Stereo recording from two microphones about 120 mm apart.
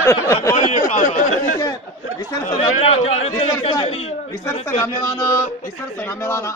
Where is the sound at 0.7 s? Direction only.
90° left.